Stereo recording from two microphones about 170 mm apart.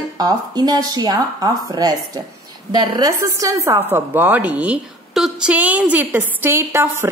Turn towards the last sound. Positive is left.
turn(degrees=-15)  # may be behind; listen again after turning